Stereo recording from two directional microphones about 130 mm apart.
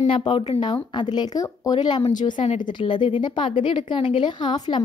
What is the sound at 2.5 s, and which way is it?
Speech, 85° left.